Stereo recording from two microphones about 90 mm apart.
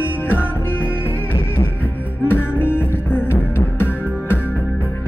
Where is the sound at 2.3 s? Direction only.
25° left (ahead or behind).